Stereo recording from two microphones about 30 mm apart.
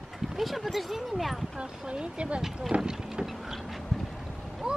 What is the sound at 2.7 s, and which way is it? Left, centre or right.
Vehicle, right.